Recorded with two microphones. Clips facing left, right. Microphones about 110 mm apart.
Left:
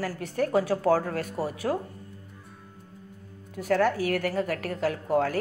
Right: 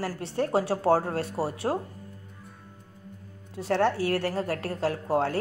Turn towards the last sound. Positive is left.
turn(degrees=-30)  # may be behind; listen again after turning